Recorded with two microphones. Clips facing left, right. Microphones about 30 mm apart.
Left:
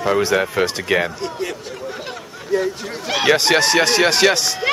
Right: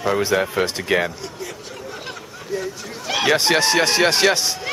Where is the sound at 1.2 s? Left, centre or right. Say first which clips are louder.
Left 7 dB; left.